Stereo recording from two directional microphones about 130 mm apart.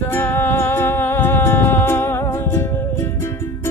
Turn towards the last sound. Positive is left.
turn(degrees=20)  # may be behind; listen again after turning